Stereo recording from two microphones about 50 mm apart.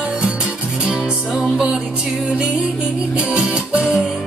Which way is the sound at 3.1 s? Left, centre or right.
Right.